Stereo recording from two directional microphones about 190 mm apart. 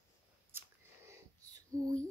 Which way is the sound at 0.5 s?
10° right (ahead or behind).